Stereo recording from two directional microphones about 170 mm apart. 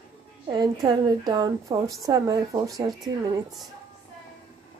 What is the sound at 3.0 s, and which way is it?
Speech, centre (ahead or behind).